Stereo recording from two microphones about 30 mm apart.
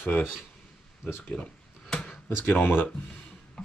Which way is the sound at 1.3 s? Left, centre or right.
Left.